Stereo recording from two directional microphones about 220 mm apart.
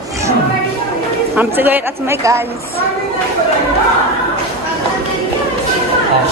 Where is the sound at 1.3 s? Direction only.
10° right (ahead or behind).